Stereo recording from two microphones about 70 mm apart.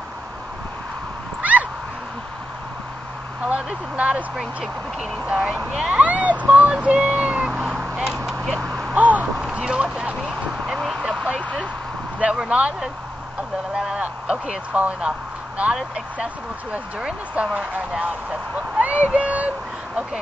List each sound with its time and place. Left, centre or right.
1.4 s cat: right
3.4 s speech: centre
5.2 s speech: centre
7.9 s a sound: centre
8.9 s a sound: right
10.7 s vehicle: centre
12.2 s speech: centre
13.7 s speech: centre
15.0 s vehicle: centre
16.7 s speech: centre